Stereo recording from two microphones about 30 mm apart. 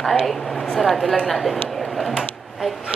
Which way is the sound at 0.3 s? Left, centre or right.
Centre.